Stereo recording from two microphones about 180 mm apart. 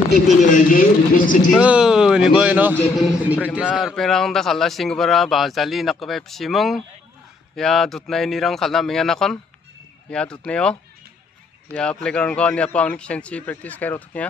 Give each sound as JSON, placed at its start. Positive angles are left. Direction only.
{"t": 0.4, "sound": "speech", "side_deg": 45}
{"t": 1.5, "sound": "a man's voice", "side_deg": -5}